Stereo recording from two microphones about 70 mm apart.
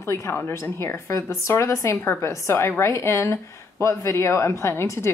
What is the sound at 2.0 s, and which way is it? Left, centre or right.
A woman's voice, left.